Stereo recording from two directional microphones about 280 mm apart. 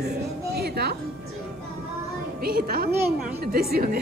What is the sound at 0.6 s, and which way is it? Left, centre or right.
Music, right.